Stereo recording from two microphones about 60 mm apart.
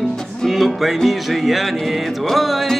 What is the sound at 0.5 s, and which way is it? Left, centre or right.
Music, centre.